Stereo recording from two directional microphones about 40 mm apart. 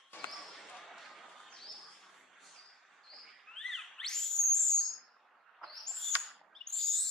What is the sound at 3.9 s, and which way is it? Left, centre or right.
Owl, centre.